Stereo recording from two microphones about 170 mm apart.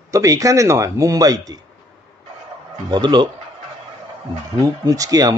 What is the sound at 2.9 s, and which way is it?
Speech, 25° right (ahead or behind).